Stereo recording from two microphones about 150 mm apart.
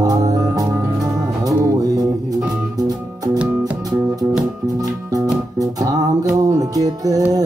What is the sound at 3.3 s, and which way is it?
Music, 10° right (ahead or behind).